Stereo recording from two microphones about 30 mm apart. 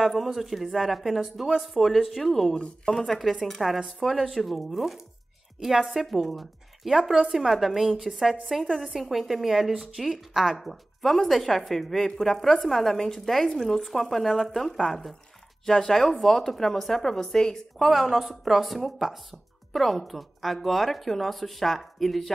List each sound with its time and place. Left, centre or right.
0.0 s a woman's voice: centre
2.5 s speech: left
3.1 s a woman's voice: centre
6.0 s a woman's voice: centre
10.5 s a woman's voice: centre
13.5 s speech: centre
17.8 s a woman's voice: centre